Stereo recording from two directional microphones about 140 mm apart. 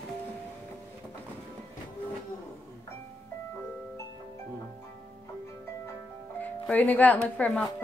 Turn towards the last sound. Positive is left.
turn(degrees=10)  # may be behind; listen again after turning